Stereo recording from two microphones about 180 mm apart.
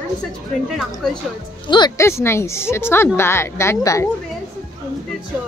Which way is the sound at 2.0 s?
15° left (ahead or behind).